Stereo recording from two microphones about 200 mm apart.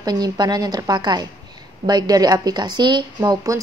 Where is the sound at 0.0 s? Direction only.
20° right (ahead or behind).